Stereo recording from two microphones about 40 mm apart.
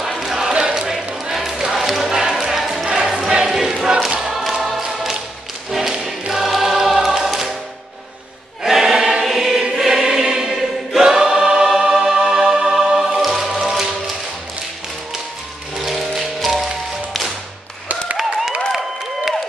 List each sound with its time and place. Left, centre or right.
0.2 s a sound: centre
1.3 s a sound: centre
2.5 s music: centre
3.5 s a sound: centre
4.2 s choir: centre
5.7 s choir: centre
8.6 s choir: centre
8.9 s choir: right
9.2 s choir: centre
11.8 s music: centre
15.8 s music: centre
18.7 s a sound: centre